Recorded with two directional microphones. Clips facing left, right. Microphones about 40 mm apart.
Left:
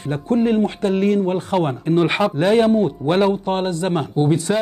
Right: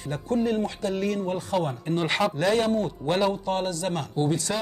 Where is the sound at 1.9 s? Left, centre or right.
Left.